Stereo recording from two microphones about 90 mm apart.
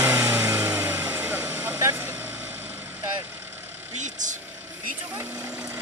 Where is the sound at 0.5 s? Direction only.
20° right (ahead or behind).